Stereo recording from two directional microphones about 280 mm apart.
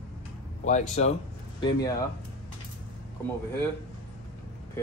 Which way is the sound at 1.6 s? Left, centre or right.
Centre.